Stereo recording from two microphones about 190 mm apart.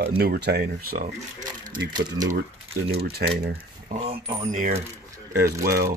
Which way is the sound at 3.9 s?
40° right (ahead or behind).